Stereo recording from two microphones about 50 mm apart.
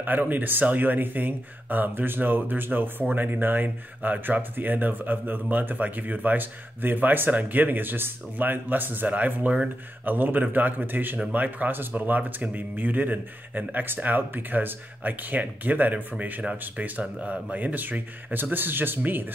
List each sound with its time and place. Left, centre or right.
0.0 s speech: right
9.1 s speech: right
10.0 s speech: right